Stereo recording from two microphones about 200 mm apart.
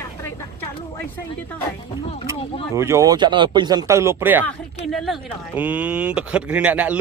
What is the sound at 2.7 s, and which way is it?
Speech, 15° right (ahead or behind).